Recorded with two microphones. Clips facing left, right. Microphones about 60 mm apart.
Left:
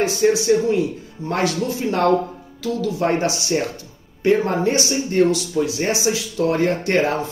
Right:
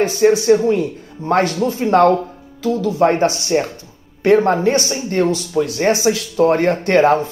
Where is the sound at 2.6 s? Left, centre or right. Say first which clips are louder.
Right 6 dB; right.